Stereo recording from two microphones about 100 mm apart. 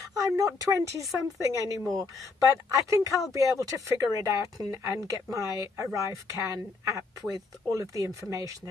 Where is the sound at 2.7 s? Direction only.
35° right (ahead or behind).